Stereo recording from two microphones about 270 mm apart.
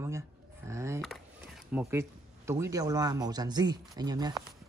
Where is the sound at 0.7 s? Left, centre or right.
Centre.